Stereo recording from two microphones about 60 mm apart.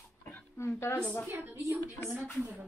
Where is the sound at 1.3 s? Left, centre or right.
Right.